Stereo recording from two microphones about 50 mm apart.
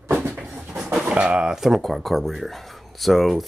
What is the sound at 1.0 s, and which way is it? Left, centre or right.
Speech, right.